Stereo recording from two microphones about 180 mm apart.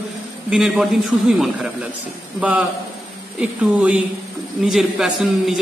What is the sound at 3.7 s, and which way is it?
A man's voice, 5° right (ahead or behind).